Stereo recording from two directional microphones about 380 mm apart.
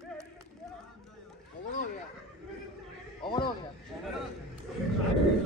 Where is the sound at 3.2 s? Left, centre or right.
Centre.